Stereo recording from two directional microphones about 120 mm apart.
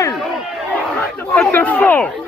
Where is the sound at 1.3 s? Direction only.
15° left (ahead or behind).